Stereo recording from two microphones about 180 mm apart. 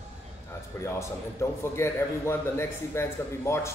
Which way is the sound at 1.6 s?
15° left (ahead or behind).